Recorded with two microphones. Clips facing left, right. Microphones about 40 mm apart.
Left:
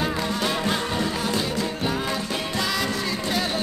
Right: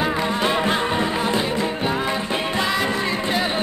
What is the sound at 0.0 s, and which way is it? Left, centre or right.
Music, right.